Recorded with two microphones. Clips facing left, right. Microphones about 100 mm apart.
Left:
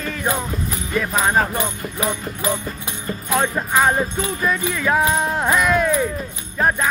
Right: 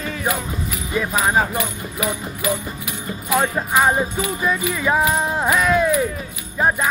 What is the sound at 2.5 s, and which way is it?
Music, 10° right (ahead or behind).